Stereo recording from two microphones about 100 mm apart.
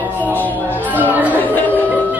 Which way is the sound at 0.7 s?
15° right (ahead or behind).